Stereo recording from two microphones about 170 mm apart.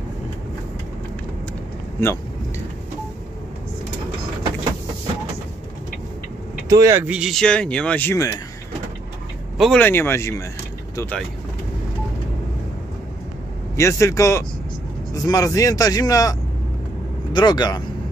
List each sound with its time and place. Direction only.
6.7 s speech: 20° right (ahead or behind); by 8.3 s 15° left (ahead or behind)
9.6 s speech: 5° left (ahead or behind)
13.7 s a man's voice: 15° left (ahead or behind)